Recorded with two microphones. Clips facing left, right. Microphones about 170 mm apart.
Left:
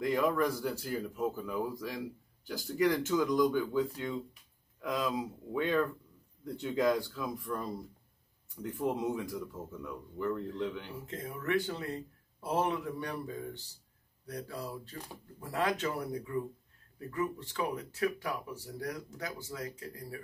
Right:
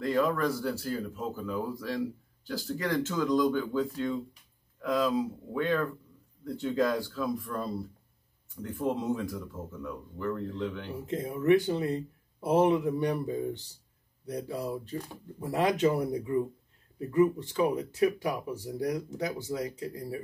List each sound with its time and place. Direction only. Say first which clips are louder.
0.0 s a man's voice: right 2 dB; 15° left (ahead or behind)
8.7 s a man's voice: right 3 dB; 15° left (ahead or behind)
11.1 s speech: right 11 dB; 20° right (ahead or behind)